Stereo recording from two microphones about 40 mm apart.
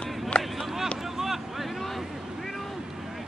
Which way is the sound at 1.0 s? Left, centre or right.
Centre.